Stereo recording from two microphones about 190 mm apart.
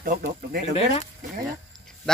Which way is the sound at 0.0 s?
50° right (ahead or behind).